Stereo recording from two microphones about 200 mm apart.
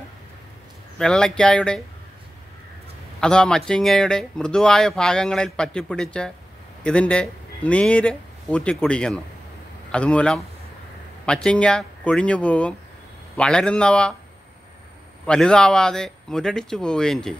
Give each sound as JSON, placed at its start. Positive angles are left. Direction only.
{"t": 0.9, "sound": "speech", "side_deg": 5}
{"t": 3.2, "sound": "speech", "side_deg": 5}
{"t": 15.2, "sound": "speech", "side_deg": 5}